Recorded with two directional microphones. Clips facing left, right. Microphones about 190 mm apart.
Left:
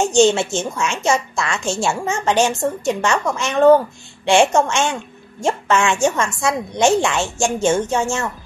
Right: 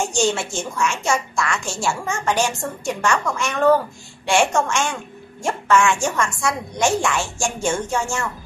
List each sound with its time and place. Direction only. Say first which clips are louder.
0.0 s a woman's voice: left 7 dB; 20° left (ahead or behind)